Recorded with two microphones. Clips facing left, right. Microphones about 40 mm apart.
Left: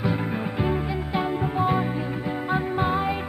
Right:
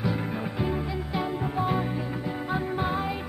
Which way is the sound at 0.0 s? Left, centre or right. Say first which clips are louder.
Left 3 dB; centre.